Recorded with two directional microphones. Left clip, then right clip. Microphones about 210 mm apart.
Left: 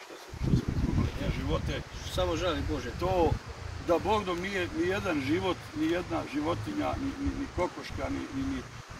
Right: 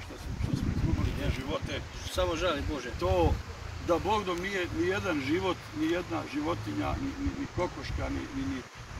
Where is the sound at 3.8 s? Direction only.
15° left (ahead or behind).